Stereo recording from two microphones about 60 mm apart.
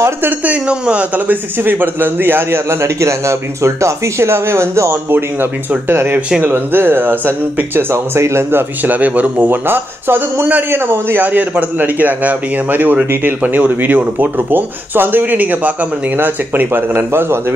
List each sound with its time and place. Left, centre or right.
0.5 s a man's voice: centre; by 4.9 s right
5.1 s a man's voice: right
8.9 s a man's voice: right